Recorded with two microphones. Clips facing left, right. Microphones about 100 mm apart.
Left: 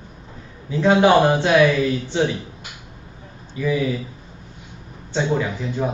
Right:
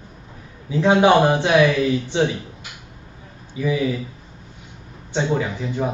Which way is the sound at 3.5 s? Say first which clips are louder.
Even; 15° right (ahead or behind).